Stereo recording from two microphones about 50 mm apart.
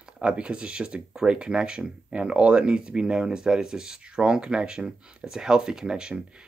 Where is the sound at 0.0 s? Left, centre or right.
Right.